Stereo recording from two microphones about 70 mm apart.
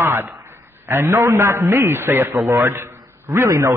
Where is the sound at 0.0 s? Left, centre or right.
Right.